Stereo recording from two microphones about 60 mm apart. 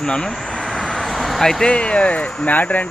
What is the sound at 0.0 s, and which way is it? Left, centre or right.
Speech, centre.